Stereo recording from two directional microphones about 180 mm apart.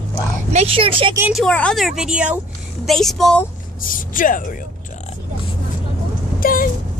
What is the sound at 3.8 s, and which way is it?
Speech, 50° left (ahead or behind).